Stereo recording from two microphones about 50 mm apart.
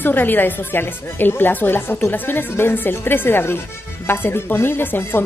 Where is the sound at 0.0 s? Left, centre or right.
Left.